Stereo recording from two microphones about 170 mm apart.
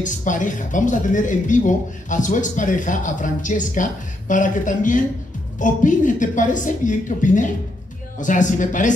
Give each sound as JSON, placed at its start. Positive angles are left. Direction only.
{"t": 0.0, "sound": "speech", "side_deg": 50}